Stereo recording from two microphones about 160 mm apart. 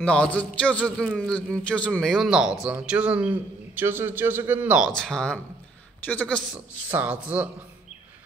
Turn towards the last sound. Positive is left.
turn(degrees=-10)  # may be behind; listen again after turning